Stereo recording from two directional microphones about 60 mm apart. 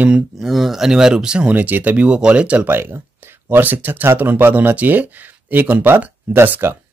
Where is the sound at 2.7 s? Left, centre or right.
Right.